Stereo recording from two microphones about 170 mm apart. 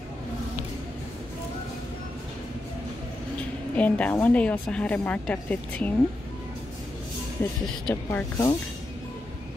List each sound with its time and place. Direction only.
3.7 s a woman's voice: 10° left (ahead or behind)
7.4 s a woman's voice: 15° left (ahead or behind)